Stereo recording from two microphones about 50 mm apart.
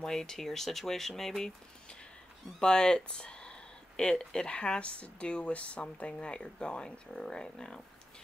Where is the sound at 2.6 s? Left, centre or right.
Centre.